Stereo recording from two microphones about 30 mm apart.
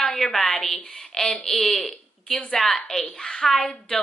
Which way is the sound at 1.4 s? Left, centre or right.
Centre.